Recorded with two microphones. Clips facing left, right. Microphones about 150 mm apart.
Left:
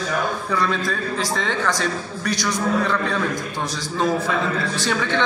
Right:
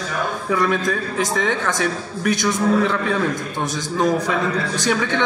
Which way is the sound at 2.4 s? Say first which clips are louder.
Right 3 dB; 20° right (ahead or behind).